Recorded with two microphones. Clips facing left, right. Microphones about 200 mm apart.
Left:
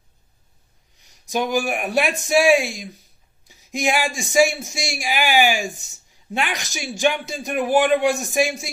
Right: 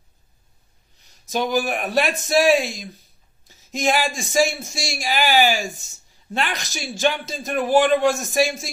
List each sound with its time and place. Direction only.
0.9 s a man's voice: 15° left (ahead or behind)
3.4 s a sound: 15° left (ahead or behind)
4.2 s a man's voice: 15° left (ahead or behind)